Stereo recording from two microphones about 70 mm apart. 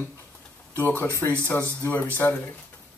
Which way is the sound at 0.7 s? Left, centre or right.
Left.